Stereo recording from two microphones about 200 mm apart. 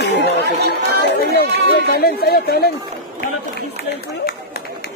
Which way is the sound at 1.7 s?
50° left (ahead or behind).